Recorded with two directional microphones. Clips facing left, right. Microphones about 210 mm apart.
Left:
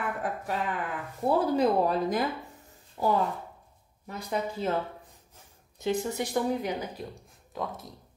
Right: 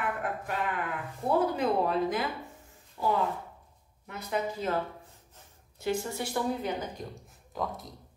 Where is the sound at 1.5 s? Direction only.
40° left (ahead or behind).